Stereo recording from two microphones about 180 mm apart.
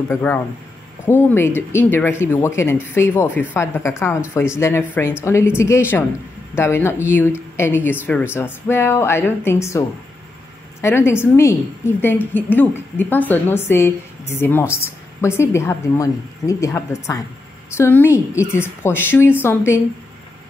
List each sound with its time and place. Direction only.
0.1 s a woman's voice: 15° left (ahead or behind)